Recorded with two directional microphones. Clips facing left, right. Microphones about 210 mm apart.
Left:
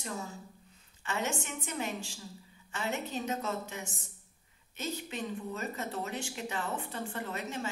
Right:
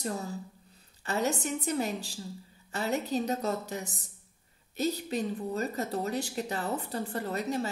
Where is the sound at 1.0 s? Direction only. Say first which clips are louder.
Right 5 dB; 35° right (ahead or behind).